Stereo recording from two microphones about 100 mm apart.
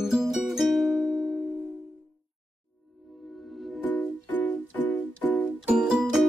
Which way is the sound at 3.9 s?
15° left (ahead or behind).